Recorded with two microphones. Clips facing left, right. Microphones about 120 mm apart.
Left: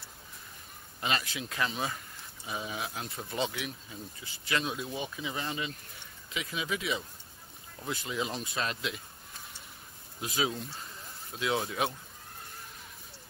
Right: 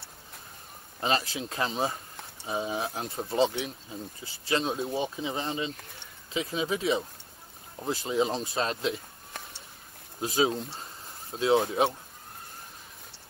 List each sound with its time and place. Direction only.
1.0 s speech: 30° right (ahead or behind)
9.3 s a sound: 70° right (ahead or behind)
10.2 s speech: 30° right (ahead or behind)